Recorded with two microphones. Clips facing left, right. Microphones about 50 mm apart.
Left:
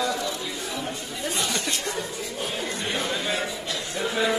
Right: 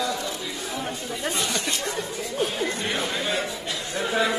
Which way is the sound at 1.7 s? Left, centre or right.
Centre.